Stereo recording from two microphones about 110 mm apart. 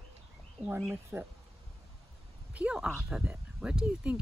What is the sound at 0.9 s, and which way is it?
Speech, 20° right (ahead or behind).